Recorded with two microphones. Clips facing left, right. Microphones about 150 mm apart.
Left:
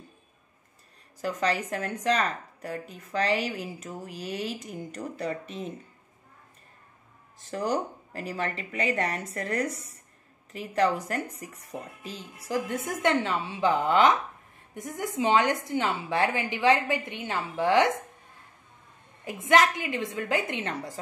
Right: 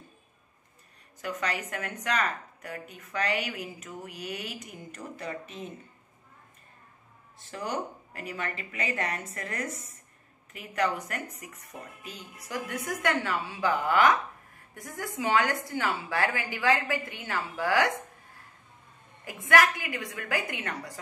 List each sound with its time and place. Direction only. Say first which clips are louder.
1.2 s a woman's voice: left 5 dB; 35° left (ahead or behind)
7.5 s a woman's voice: left 5 dB; 35° left (ahead or behind)
19.2 s speech: left 2 dB; 25° left (ahead or behind)